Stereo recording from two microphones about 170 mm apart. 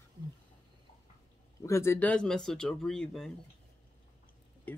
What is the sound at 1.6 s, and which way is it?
Speech, 15° left (ahead or behind).